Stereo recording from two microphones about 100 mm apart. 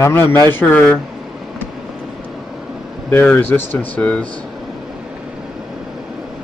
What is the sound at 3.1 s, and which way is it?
A man's voice, 20° left (ahead or behind).